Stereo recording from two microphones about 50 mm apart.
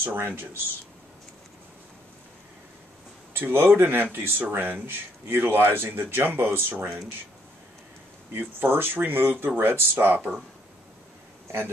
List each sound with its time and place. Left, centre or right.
0.0 s speech: right
3.5 s speech: right
8.3 s speech: right